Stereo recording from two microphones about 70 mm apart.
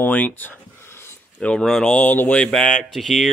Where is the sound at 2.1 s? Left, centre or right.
Left.